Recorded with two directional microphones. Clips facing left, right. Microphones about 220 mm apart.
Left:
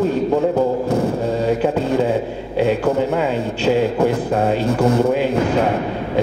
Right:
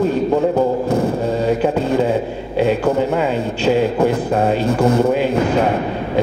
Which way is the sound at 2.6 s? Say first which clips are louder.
Right 1 dB; 20° right (ahead or behind).